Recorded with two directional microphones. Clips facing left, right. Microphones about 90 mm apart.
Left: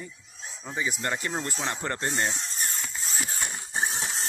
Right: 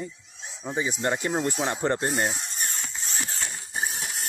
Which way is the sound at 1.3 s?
10° right (ahead or behind).